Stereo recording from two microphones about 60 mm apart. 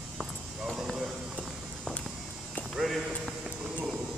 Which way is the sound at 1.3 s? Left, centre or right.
Centre.